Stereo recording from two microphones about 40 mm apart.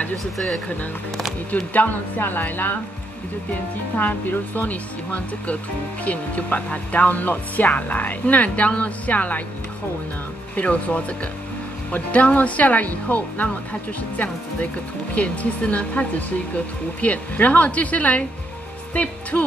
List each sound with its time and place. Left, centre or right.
1.5 s a woman's voice: left
3.9 s a woman's voice: left
4.6 s speech: left
10.5 s speech: left
19.3 s speech: left